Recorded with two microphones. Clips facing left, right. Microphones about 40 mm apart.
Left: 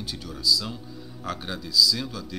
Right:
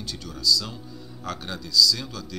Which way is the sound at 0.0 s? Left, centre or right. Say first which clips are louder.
Right 1 dB; centre.